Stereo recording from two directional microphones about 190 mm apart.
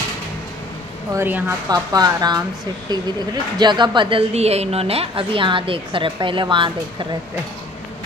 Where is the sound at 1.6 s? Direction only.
20° right (ahead or behind).